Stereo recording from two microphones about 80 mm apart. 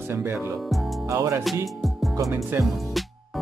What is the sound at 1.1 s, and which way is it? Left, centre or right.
Music, right.